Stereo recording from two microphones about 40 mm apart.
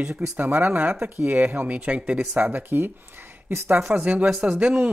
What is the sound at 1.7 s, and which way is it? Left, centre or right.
Speech, right.